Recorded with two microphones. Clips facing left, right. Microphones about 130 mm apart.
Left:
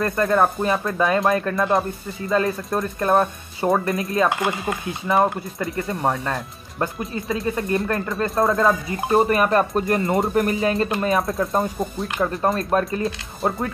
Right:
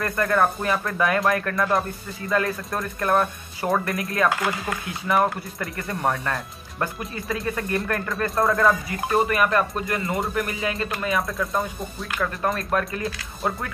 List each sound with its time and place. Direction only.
0.0 s speech: 25° left (ahead or behind)